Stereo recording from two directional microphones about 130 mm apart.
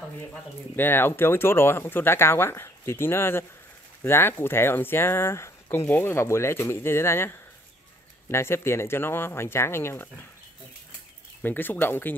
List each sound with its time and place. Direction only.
0.7 s speech: 15° left (ahead or behind)
11.4 s speech: 15° left (ahead or behind)